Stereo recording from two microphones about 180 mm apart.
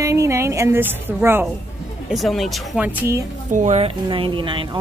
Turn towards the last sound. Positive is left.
turn(degrees=-25)  # may be behind; listen again after turning